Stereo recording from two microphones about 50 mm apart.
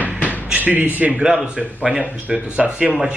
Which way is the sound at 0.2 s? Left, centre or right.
Left.